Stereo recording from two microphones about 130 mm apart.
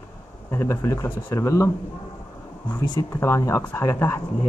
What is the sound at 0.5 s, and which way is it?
Speech, 25° left (ahead or behind).